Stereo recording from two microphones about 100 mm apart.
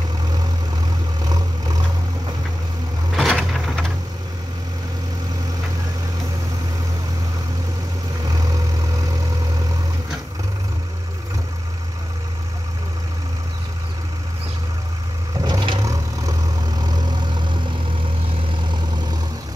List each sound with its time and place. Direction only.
1.2 s vehicle: 40° right (ahead or behind)
3.1 s a sound: centre (ahead or behind)
8.3 s vehicle: 40° right (ahead or behind)
15.4 s vehicle: 50° right (ahead or behind)
15.8 s vehicle: 35° right (ahead or behind)